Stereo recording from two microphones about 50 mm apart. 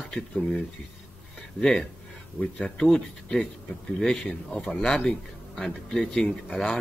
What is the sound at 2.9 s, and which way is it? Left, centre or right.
Speech, centre.